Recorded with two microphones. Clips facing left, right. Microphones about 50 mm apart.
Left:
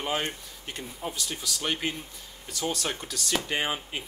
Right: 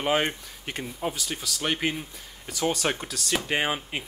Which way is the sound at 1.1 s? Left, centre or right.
Centre.